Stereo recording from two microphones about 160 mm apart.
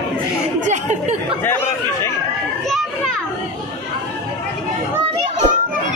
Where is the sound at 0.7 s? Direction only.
45° right (ahead or behind).